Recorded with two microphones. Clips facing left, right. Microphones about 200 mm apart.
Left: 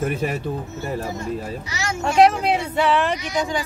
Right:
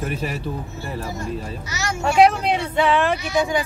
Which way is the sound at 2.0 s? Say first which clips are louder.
Even; centre (ahead or behind).